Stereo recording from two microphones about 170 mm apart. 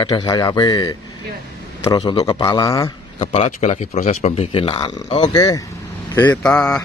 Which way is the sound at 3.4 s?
40° left (ahead or behind).